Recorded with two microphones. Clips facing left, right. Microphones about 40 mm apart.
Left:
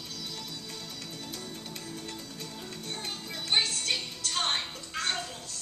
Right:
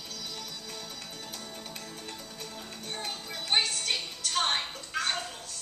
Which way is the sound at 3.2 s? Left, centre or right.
Centre.